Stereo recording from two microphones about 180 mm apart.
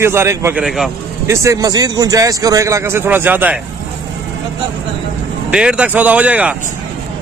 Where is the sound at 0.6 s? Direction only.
Centre (ahead or behind).